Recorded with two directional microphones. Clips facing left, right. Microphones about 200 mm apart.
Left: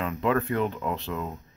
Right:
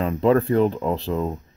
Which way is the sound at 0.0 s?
35° right (ahead or behind).